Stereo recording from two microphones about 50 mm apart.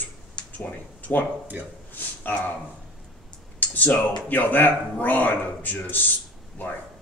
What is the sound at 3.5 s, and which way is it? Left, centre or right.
Speech, left.